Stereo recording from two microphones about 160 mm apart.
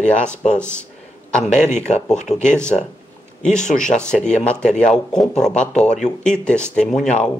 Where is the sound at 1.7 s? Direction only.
45° left (ahead or behind).